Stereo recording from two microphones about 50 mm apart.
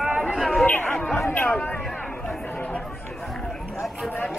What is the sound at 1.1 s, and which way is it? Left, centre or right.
Chatter, left.